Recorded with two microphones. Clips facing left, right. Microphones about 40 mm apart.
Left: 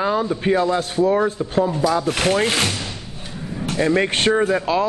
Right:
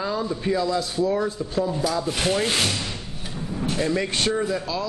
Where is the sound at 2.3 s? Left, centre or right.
Left.